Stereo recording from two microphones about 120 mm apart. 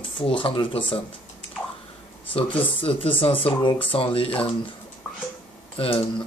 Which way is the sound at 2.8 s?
50° left (ahead or behind).